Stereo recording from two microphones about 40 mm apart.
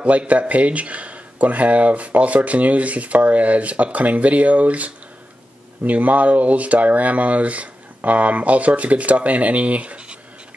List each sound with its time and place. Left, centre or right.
0.3 s speech: right